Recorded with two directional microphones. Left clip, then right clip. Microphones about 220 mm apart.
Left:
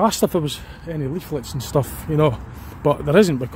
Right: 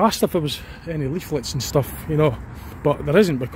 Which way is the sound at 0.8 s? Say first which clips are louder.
Even; centre (ahead or behind).